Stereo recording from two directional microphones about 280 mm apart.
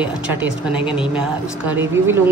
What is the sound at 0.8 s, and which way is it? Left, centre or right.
Speech, centre.